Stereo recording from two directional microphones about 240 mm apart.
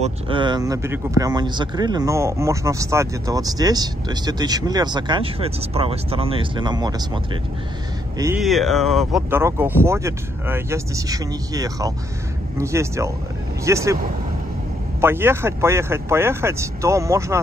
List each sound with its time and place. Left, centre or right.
0.0 s speech: centre
8.4 s speech: centre
15.0 s speech: centre